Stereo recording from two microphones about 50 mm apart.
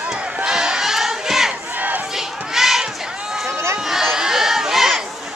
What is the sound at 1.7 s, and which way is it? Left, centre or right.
Battle cry, right.